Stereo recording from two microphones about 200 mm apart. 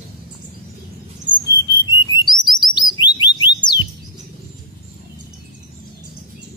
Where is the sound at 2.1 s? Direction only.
20° left (ahead or behind).